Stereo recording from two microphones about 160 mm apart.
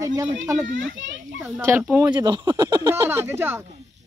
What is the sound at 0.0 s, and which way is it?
Speech, 20° right (ahead or behind).